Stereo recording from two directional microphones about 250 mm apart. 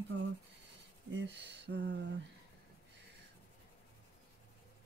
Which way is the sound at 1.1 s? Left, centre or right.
Right.